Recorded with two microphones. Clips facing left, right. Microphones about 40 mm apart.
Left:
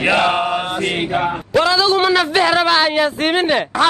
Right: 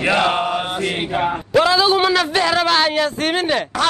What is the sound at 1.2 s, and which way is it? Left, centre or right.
Speech, centre.